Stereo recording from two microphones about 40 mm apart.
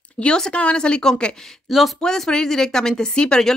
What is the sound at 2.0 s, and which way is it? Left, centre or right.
Speech, centre.